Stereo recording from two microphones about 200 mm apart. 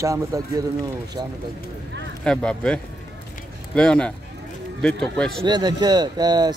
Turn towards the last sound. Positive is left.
turn(degrees=-20)  # may be behind; listen again after turning